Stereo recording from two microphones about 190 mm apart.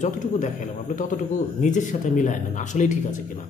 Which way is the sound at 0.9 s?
40° left (ahead or behind).